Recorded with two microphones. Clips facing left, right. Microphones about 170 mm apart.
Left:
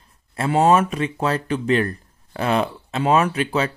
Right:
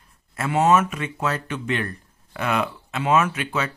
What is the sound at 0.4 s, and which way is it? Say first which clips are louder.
Speech: left 2 dB; 30° left (ahead or behind).